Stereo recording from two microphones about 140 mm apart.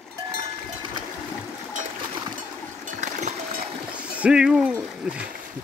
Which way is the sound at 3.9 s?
10° right (ahead or behind).